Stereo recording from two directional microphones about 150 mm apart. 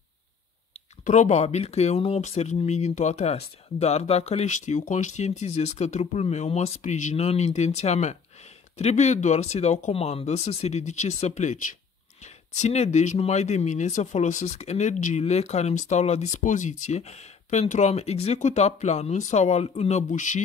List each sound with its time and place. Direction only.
1.0 s speech: 55° left (ahead or behind)